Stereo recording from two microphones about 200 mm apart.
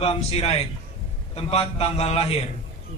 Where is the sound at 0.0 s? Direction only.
30° left (ahead or behind).